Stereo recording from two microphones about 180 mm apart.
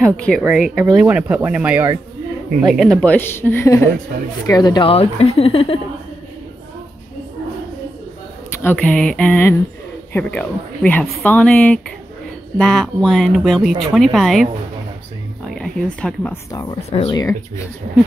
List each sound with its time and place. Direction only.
0.0 s speech: 5° left (ahead or behind); by 5.8 s 30° left (ahead or behind)
8.6 s speech: 5° left (ahead or behind)
15.4 s speech: 5° left (ahead or behind)
16.9 s speech: 30° left (ahead or behind)